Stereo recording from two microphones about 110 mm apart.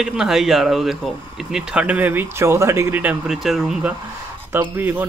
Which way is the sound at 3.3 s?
5° right (ahead or behind).